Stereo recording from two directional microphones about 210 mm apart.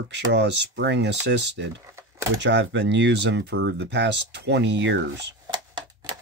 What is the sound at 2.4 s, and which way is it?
Speech, 55° right (ahead or behind).